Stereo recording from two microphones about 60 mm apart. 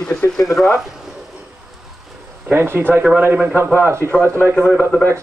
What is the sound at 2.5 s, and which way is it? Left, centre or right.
Speech, right.